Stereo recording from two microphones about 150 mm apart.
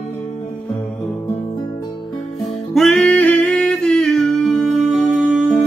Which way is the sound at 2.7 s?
5° left (ahead or behind).